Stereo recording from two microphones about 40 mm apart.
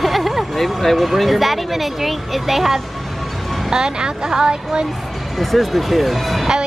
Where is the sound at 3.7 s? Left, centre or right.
Centre.